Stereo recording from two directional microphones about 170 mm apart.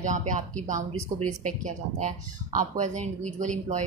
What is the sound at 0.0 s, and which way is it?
Speech, 45° right (ahead or behind).